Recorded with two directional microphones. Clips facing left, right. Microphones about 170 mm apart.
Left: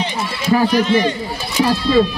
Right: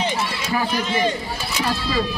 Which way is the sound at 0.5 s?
35° left (ahead or behind).